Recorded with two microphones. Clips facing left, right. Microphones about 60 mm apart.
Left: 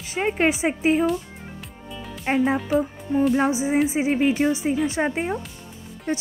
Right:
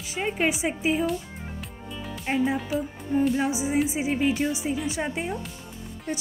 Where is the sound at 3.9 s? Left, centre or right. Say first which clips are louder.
Left 4 dB; left.